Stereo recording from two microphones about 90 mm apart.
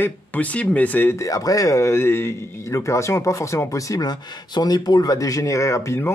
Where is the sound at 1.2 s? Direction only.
40° left (ahead or behind).